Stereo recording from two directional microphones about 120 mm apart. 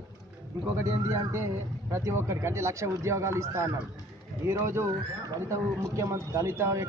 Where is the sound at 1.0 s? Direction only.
20° right (ahead or behind).